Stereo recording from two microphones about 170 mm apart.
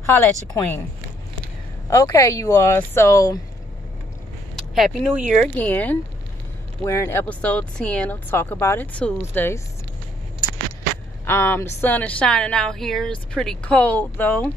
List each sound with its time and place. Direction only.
0.5 s a woman's voice: 10° left (ahead or behind)
1.9 s a woman's voice: 15° left (ahead or behind)
4.6 s a woman's voice: centre (ahead or behind)
11.2 s a woman's voice: 15° left (ahead or behind)